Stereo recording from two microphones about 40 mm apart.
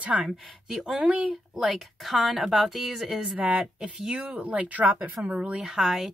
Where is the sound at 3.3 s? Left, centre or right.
Right.